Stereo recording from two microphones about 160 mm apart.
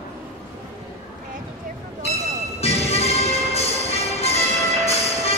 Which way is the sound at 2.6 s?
40° left (ahead or behind).